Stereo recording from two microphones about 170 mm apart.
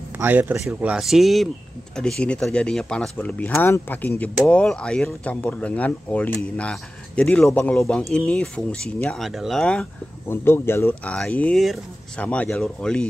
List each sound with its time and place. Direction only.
0.2 s speech: 10° right (ahead or behind); by 13.0 s 5° left (ahead or behind)